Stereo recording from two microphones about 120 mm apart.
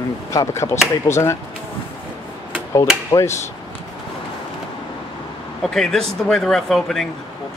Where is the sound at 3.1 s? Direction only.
25° left (ahead or behind).